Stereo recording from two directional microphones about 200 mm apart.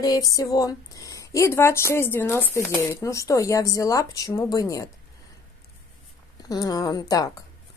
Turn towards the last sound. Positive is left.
turn(degrees=20)  # may be behind; listen again after turning